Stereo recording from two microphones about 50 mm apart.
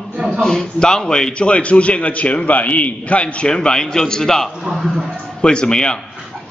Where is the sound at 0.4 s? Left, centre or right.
Centre.